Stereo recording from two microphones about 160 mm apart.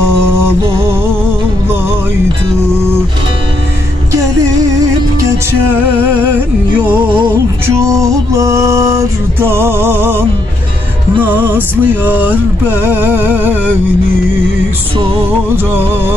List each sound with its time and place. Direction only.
6.9 s music: 15° right (ahead or behind)
11.2 s music: 10° right (ahead or behind)